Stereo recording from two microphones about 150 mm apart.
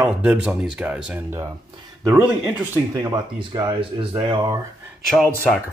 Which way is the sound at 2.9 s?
25° right (ahead or behind).